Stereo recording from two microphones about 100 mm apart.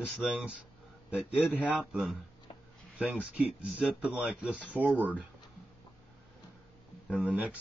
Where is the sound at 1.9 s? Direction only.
10° right (ahead or behind).